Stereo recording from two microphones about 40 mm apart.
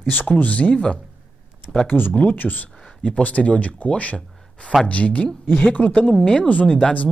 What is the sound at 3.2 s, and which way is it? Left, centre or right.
Speech, left.